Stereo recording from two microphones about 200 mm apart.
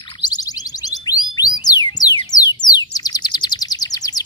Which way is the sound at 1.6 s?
20° left (ahead or behind).